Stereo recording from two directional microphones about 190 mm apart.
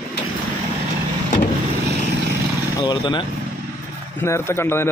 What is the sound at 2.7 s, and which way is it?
Speech, 25° left (ahead or behind).